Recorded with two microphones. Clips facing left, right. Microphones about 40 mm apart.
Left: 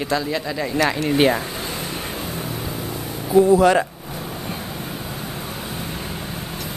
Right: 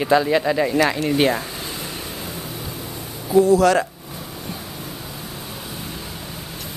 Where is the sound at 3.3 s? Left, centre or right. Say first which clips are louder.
Left 1 dB; left.